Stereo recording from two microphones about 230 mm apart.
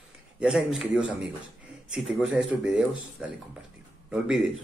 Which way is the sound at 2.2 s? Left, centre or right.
Centre.